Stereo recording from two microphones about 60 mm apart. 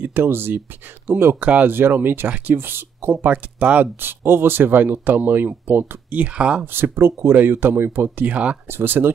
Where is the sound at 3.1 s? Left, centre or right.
Right.